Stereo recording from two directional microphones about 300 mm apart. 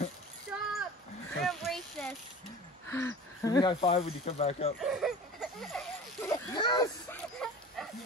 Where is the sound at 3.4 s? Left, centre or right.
Centre.